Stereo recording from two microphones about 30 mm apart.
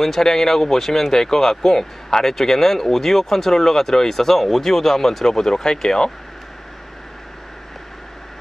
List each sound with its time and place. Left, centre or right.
0.2 s speech: centre
2.0 s speech: left